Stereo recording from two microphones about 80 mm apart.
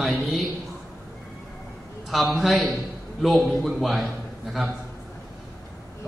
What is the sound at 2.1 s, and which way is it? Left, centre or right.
A man's voice, centre.